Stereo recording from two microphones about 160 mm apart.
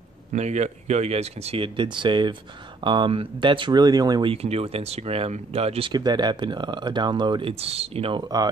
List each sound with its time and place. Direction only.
0.3 s speech: 45° right (ahead or behind); by 8.5 s 25° right (ahead or behind)